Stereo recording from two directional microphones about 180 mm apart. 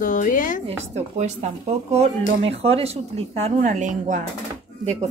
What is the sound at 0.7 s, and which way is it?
Speech, 40° right (ahead or behind).